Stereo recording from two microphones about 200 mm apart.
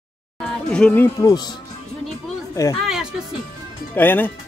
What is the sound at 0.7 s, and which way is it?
Speech, 5° left (ahead or behind).